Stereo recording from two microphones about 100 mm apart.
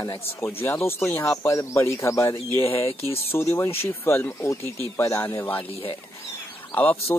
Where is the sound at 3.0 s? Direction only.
80° left.